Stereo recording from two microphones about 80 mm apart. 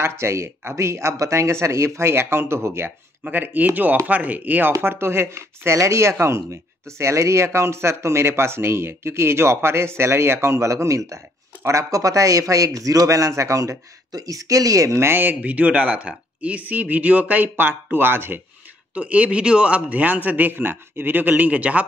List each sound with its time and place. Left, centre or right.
0.0 s speech: right
3.3 s a man's voice: right
18.9 s a man's voice: centre